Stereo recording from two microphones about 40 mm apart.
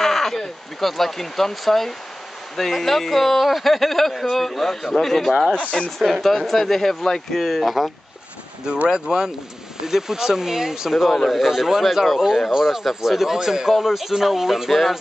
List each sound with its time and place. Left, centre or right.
0.0 s speech: centre
5.6 s speech: left
5.9 s speech: centre
8.8 s speech: centre